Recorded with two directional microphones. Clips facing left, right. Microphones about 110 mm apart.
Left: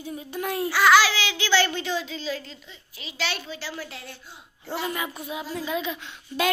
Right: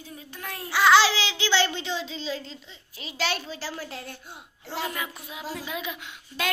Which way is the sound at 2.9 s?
45° right (ahead or behind).